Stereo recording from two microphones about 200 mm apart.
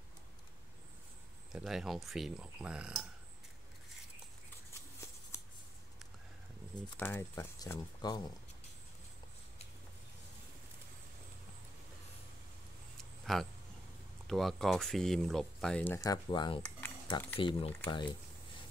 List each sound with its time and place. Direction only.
1.5 s speech: centre (ahead or behind)
7.0 s speech: 10° left (ahead or behind)
12.9 s a sound: centre (ahead or behind)
14.2 s speech: centre (ahead or behind); by 18.1 s 25° left (ahead or behind)